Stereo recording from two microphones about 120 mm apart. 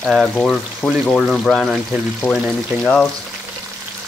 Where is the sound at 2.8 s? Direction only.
10° left (ahead or behind).